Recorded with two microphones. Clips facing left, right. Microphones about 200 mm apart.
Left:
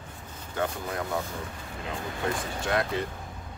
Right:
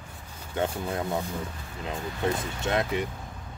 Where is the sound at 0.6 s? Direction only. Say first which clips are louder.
Right 2 dB; 25° right (ahead or behind).